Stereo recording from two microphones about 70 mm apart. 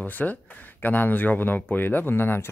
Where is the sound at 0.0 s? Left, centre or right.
Left.